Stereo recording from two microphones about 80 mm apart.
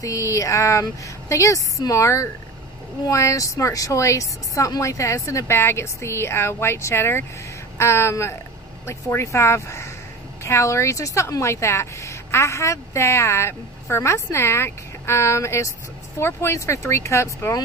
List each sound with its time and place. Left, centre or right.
0.0 s speech: left